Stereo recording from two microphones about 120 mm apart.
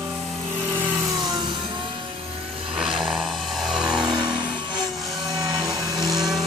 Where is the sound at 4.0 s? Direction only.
35° right (ahead or behind).